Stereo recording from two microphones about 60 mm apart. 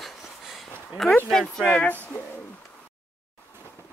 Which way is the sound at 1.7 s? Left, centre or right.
Left.